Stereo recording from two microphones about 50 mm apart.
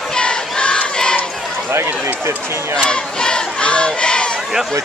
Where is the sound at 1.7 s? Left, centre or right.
Right.